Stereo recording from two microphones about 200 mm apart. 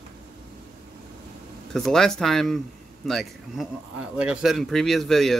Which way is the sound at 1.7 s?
Centre (ahead or behind).